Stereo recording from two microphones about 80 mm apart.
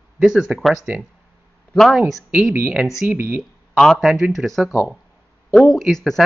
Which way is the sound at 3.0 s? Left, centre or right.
Right.